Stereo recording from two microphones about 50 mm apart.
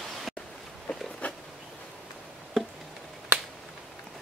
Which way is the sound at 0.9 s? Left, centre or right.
Left.